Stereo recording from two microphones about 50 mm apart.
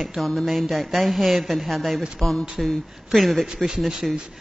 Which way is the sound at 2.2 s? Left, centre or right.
Left.